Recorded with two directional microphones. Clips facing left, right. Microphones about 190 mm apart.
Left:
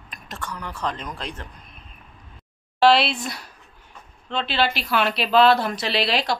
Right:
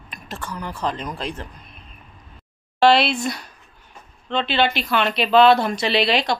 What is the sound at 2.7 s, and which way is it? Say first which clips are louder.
Speech: right 1 dB; centre (ahead or behind).